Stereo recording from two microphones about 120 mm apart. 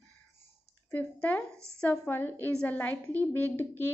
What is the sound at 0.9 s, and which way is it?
A woman's voice, 15° left (ahead or behind).